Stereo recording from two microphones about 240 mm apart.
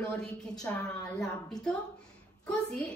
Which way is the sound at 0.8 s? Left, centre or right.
Centre.